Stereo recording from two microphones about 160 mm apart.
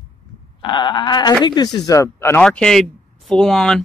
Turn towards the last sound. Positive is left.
turn(degrees=5)  # may be behind; listen again after turning